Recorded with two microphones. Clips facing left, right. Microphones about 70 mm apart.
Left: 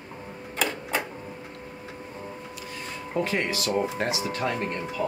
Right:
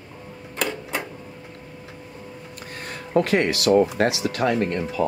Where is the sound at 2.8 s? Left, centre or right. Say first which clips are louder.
Right 7 dB; right.